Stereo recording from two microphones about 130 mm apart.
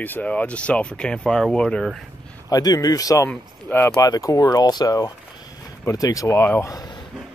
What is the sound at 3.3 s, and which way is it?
Speech, 15° left (ahead or behind).